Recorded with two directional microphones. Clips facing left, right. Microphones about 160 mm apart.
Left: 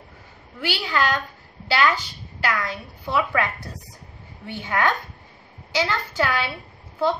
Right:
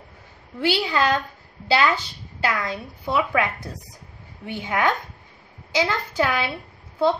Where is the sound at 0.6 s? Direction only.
25° right (ahead or behind).